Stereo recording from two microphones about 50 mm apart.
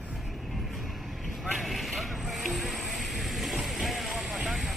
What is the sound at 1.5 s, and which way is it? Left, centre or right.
Vehicle, centre.